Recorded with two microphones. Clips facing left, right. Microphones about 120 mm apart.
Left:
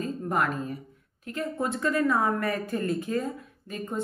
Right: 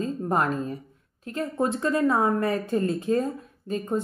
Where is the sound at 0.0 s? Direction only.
30° right (ahead or behind).